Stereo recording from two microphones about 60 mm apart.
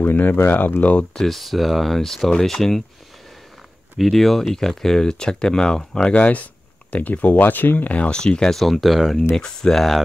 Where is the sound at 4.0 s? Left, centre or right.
Centre.